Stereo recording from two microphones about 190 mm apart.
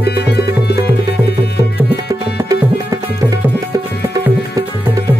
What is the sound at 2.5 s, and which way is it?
Music, 20° right (ahead or behind).